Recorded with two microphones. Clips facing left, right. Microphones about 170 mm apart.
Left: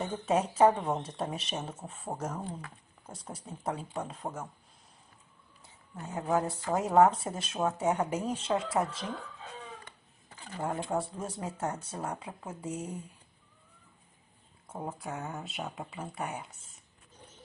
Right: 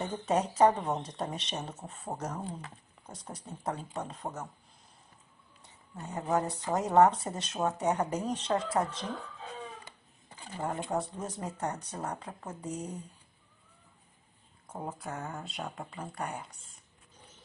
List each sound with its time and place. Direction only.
0.0 s speech: centre (ahead or behind)
5.6 s speech: centre (ahead or behind)
10.3 s a sound: 15° right (ahead or behind)
10.9 s speech: centre (ahead or behind)
14.9 s speech: centre (ahead or behind)